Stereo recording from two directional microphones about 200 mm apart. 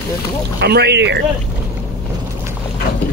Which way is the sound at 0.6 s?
55° right (ahead or behind).